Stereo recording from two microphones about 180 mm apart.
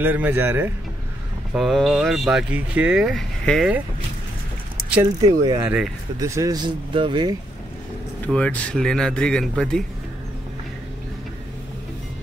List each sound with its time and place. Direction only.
0.0 s speech: 10° right (ahead or behind)
1.5 s speech: centre (ahead or behind)
5.2 s speech: 20° right (ahead or behind)
8.3 s speech: 5° left (ahead or behind)